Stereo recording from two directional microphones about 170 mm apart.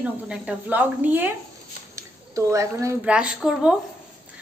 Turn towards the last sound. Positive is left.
turn(degrees=-5)  # may be behind; listen again after turning